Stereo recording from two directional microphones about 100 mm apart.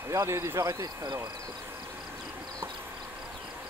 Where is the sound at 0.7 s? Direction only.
40° right (ahead or behind).